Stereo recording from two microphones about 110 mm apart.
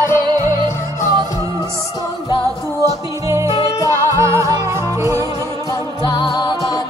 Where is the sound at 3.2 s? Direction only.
25° right (ahead or behind).